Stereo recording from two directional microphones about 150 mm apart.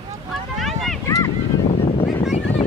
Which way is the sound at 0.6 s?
Centre (ahead or behind).